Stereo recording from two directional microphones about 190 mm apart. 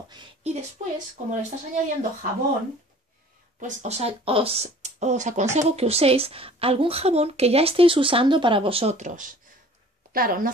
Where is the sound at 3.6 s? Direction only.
35° right (ahead or behind).